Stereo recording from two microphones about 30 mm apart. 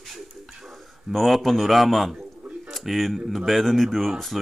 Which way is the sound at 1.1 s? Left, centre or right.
Centre.